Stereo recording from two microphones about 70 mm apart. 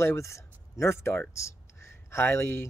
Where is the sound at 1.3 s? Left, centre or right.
Left.